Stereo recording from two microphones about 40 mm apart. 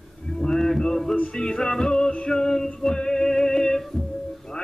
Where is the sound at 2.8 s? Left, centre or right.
Centre.